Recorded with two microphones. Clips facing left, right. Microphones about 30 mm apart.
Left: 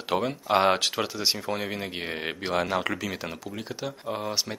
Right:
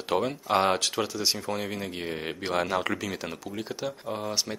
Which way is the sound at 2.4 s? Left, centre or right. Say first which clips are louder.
Even; centre.